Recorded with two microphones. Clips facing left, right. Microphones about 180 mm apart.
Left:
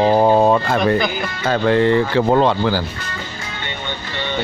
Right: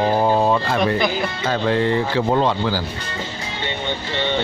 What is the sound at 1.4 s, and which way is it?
Speech, 60° left (ahead or behind).